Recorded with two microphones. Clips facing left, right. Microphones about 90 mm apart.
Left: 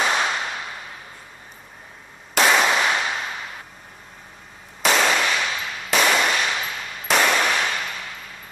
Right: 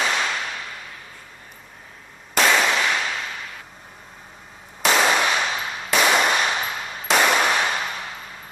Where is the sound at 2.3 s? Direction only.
5° left (ahead or behind).